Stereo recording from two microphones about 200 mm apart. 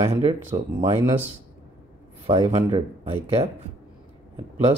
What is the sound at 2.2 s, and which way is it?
Speech, 25° right (ahead or behind).